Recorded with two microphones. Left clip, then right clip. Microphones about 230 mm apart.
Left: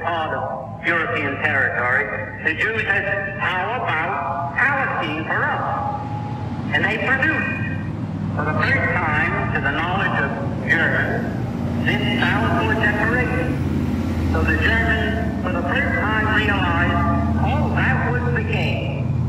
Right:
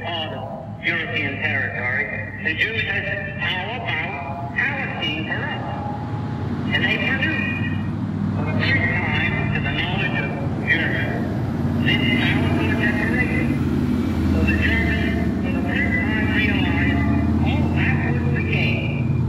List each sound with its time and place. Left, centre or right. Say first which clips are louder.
1.4 s speech: left 7 dB; left
6.8 s speech: left 3 dB; left
8.5 s speech: left 1 dB; left
14.6 s speech: left 3 dB; left
15.7 s vehicle: left 2 dB; left